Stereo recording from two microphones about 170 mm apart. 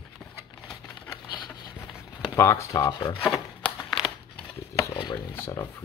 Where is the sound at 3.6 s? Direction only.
10° left (ahead or behind).